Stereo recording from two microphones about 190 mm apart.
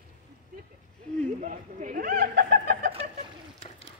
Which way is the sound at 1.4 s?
45° right (ahead or behind).